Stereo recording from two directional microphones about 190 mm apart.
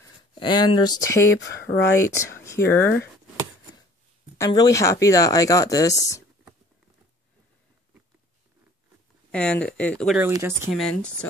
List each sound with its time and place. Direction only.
0.4 s speech: 25° left (ahead or behind)
1.4 s speech: 65° left (ahead or behind)
2.0 s speech: 15° left (ahead or behind)
4.4 s speech: 20° left (ahead or behind)
9.3 s speech: 5° left (ahead or behind)
10.3 s speech: 15° right (ahead or behind)
10.7 s speech: 5° left (ahead or behind)